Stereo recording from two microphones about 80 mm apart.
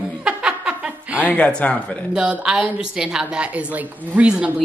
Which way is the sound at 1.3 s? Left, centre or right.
Centre.